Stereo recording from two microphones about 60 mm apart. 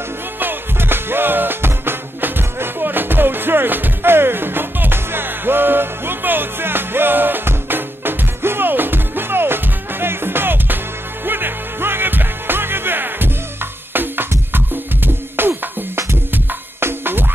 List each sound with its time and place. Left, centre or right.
0.4 s music: right
15.4 s music: right
16.8 s music: right